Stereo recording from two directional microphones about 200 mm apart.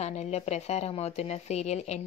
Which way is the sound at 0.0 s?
35° left (ahead or behind).